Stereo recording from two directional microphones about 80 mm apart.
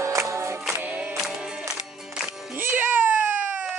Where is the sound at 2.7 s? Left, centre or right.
Right.